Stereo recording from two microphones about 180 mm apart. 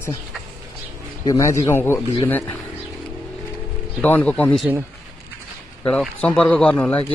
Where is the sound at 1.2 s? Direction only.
15° left (ahead or behind).